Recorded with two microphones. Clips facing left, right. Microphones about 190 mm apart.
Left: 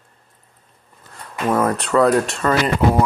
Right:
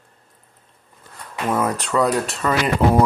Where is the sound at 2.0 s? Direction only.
Centre (ahead or behind).